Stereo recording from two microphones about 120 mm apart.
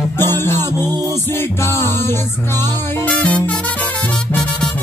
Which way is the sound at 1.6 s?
20° left (ahead or behind).